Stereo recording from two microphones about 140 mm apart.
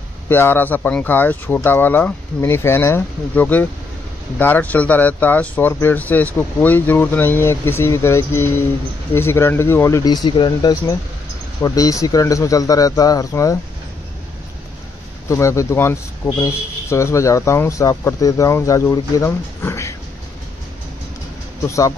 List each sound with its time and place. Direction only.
0.3 s speech: 15° left (ahead or behind)
15.2 s speech: 20° left (ahead or behind)
21.6 s speech: 20° left (ahead or behind)